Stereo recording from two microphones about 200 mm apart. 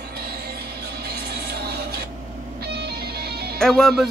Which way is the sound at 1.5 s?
55° right (ahead or behind).